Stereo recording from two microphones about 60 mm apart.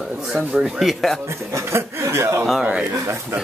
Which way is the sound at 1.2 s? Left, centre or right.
Right.